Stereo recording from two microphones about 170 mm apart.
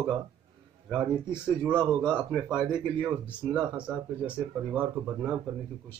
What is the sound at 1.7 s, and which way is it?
Speech, 25° right (ahead or behind).